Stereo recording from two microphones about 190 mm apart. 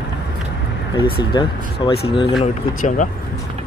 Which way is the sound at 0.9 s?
25° left (ahead or behind).